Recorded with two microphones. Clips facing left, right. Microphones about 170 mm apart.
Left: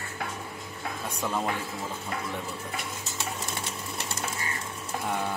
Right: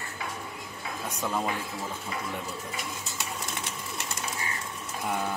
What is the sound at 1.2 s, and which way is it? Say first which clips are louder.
Speech: even; 5° right (ahead or behind).